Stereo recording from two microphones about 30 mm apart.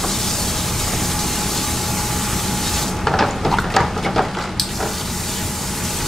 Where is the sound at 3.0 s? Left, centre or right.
Centre.